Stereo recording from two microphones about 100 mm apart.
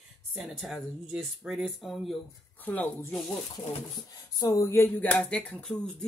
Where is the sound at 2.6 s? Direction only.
15° left (ahead or behind).